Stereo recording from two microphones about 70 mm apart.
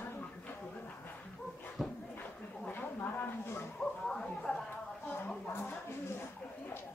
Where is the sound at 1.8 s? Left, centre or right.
Centre.